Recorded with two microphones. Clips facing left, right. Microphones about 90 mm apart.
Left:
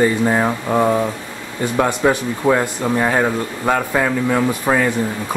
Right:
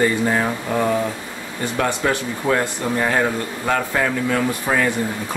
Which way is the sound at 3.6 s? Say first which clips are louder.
Left 3 dB; 15° left (ahead or behind).